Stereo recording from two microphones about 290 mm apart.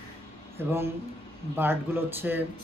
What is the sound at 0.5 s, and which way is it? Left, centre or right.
Speech, centre.